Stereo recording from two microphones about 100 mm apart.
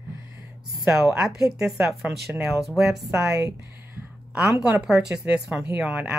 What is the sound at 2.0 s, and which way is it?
Speech, 15° right (ahead or behind).